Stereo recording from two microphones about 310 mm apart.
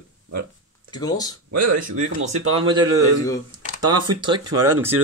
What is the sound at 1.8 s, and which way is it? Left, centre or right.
A man's voice, right.